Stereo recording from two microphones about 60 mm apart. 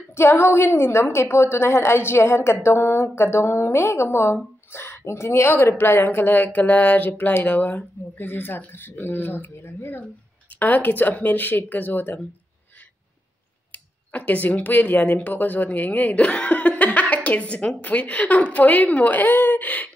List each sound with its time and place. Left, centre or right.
0.1 s a woman's voice: left
13.7 s speech: left